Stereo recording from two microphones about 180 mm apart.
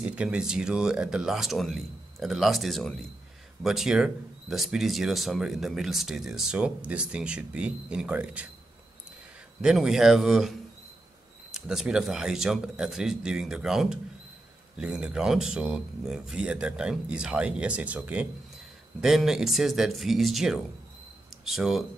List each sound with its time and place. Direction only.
0.0 s speech: 5° right (ahead or behind)
9.6 s speech: centre (ahead or behind)
11.5 s speech: 5° right (ahead or behind)